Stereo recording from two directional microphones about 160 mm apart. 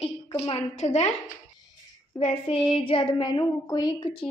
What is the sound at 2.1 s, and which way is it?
A woman's voice, 35° left (ahead or behind).